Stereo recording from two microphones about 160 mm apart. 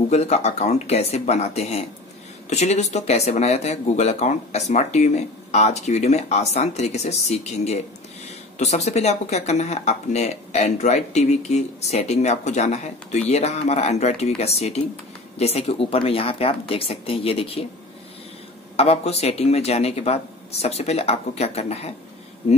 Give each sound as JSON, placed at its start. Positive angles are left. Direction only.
{"t": 0.1, "sound": "speech", "side_deg": 45}
{"t": 18.8, "sound": "speech", "side_deg": 40}